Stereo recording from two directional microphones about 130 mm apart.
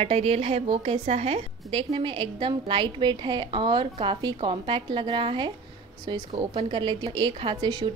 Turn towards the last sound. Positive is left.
turn(degrees=-35)  # may be behind; listen again after turning